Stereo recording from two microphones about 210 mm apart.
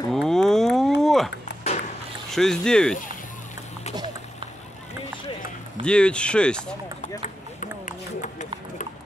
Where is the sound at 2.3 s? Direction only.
5° left (ahead or behind).